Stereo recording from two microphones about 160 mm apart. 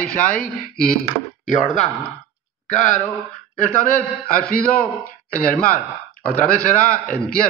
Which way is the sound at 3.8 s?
65° left (ahead or behind).